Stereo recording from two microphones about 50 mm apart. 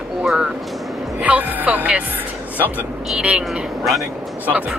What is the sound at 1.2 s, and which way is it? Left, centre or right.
Speech, right.